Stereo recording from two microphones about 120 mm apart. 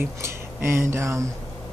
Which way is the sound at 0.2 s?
20° right (ahead or behind).